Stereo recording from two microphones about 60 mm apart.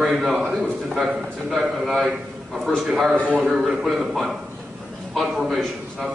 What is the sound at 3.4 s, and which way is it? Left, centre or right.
Speech, centre.